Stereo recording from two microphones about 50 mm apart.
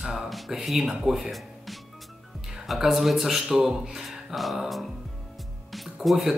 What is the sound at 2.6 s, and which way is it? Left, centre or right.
Speech, centre.